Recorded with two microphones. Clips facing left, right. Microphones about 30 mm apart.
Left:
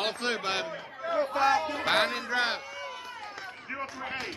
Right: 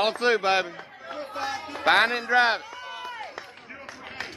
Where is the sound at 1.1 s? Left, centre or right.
Centre.